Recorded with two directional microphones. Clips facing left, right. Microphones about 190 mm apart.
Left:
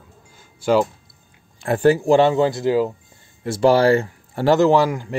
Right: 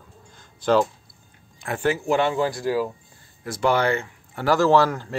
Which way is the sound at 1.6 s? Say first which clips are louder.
Left 8 dB; 35° left (ahead or behind).